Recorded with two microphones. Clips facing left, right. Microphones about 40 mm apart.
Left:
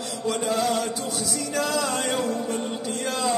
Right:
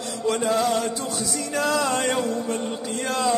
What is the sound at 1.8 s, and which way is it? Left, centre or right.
Chant, right.